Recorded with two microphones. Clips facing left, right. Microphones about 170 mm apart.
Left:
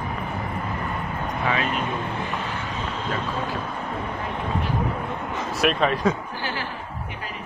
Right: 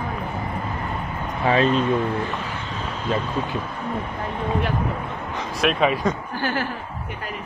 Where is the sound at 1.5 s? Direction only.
30° right (ahead or behind).